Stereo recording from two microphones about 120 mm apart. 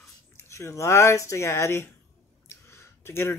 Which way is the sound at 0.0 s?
25° left (ahead or behind).